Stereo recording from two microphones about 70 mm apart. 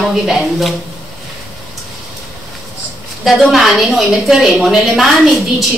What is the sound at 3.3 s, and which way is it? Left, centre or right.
A woman's voice, centre.